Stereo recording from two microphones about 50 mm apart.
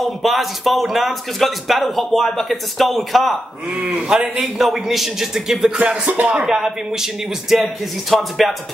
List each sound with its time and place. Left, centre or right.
0.0 s speech: centre
3.9 s a man's voice: centre
4.6 s speech: centre
5.8 s music: right
6.3 s speech: centre